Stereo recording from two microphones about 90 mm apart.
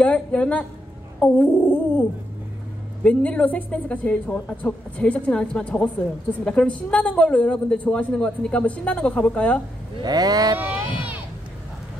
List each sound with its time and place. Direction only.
0.0 s a woman's voice: 15° left (ahead or behind)
10.0 s speech: 45° right (ahead or behind)
10.5 s a sound: 20° right (ahead or behind)